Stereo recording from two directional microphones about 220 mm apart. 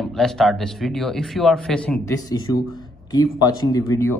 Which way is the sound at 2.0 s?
15° left (ahead or behind).